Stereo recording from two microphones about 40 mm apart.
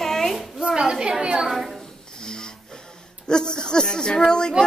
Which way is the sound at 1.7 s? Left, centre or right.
Centre.